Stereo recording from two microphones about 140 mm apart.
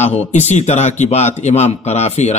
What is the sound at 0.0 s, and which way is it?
A man's voice, 55° left (ahead or behind).